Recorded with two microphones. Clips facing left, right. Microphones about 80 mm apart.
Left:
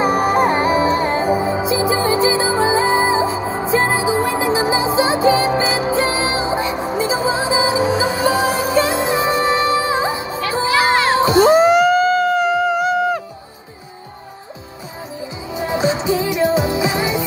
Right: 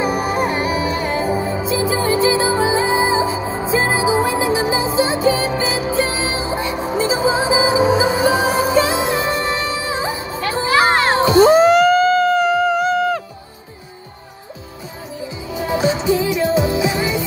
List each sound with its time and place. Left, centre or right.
0.0 s music: left
1.2 s music: centre
4.6 s music: left
5.2 s music: left
6.6 s music: centre
7.3 s music: centre
8.7 s music: centre
9.4 s music: left
10.7 s children playing: right
11.4 s a sound: centre
15.5 s music: left